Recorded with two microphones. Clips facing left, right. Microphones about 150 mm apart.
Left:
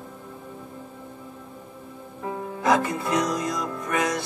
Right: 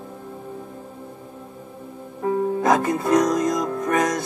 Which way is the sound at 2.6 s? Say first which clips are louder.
Left 2 dB; 45° right (ahead or behind).